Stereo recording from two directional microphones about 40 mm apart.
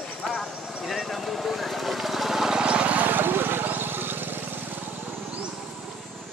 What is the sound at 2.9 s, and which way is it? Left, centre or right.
Vehicle, right.